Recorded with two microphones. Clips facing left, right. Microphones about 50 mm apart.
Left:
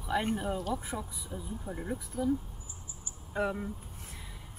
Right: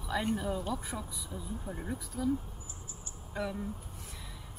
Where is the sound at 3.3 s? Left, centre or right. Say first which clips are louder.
Left 4 dB; left.